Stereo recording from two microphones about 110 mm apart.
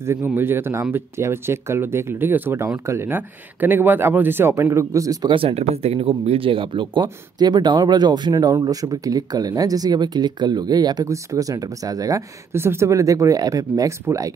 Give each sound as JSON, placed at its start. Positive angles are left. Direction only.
{"t": 0.2, "sound": "speech", "side_deg": -20}
{"t": 5.3, "sound": "speech", "side_deg": -60}
{"t": 12.5, "sound": "speech", "side_deg": -20}